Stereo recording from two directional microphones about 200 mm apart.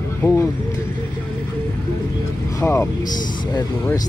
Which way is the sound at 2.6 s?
10° left (ahead or behind).